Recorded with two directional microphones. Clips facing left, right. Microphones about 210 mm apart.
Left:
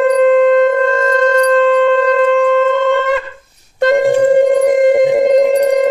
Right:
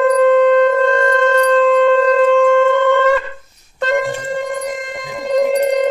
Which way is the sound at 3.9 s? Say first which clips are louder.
Left 9 dB; 55° left (ahead or behind).